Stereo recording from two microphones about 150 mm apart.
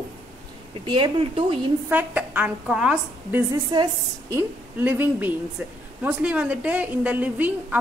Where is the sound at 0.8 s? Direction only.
30° right (ahead or behind).